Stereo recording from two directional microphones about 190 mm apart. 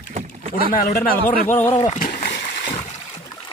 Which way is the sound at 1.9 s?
45° left (ahead or behind).